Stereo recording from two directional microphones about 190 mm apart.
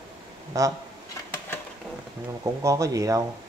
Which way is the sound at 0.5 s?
20° right (ahead or behind).